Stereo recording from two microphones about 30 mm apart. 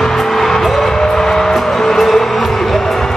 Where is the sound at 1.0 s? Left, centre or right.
Centre.